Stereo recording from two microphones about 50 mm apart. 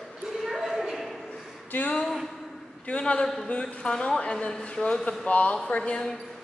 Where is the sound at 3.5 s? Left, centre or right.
Left.